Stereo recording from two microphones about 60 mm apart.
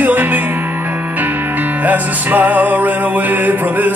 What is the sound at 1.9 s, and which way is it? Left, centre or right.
Music, right.